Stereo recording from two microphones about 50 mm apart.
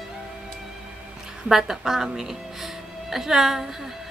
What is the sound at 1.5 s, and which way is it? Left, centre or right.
A woman's voice, centre.